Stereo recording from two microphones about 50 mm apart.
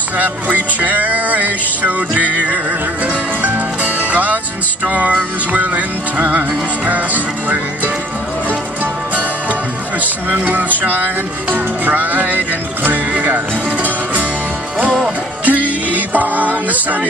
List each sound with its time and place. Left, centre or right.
0.2 s music: right
7.4 s speech: right
10.3 s music: right
15.4 s music: right